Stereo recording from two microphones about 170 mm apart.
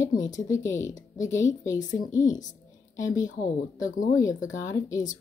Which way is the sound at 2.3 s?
50° left (ahead or behind).